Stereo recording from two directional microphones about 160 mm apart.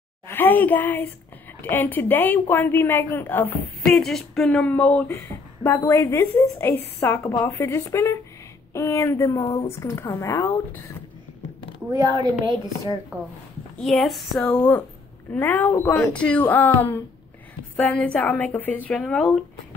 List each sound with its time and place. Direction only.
0.3 s a woman's voice: 10° left (ahead or behind)
8.7 s a sound: 20° left (ahead or behind)
9.7 s a woman's voice: 15° left (ahead or behind)
11.9 s a woman's voice: 25° right (ahead or behind)
13.7 s a woman's voice: centre (ahead or behind)